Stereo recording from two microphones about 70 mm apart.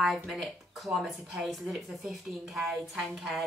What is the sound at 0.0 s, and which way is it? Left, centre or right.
A woman's voice, centre.